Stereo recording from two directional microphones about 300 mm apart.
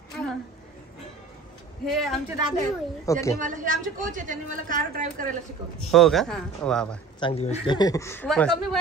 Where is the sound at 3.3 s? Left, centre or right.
Right.